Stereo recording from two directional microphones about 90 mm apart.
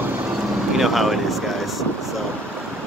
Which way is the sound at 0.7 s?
5° right (ahead or behind).